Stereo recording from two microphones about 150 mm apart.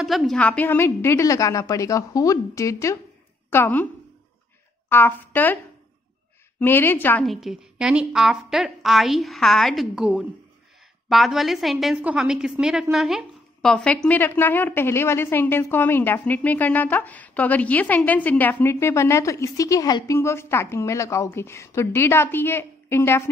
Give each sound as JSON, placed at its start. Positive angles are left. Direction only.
{"t": 0.0, "sound": "a woman's voice", "side_deg": 0}
{"t": 6.6, "sound": "a woman's voice", "side_deg": 15}
{"t": 7.2, "sound": "a woman's voice", "side_deg": 0}